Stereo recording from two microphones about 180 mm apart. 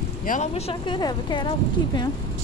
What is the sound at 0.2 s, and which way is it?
A woman's voice, 45° left (ahead or behind).